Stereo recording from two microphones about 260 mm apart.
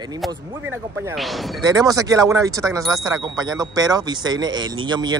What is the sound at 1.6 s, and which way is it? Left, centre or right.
Speech, centre.